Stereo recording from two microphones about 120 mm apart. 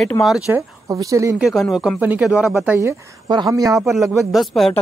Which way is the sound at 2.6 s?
20° right (ahead or behind).